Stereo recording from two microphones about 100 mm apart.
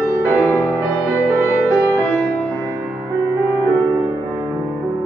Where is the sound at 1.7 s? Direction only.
5° right (ahead or behind).